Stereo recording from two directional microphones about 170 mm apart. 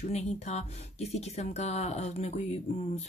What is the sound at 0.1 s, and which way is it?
Speech, 40° left (ahead or behind).